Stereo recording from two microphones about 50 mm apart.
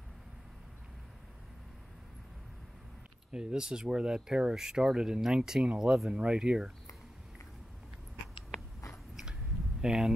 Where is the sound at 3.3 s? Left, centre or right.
Centre.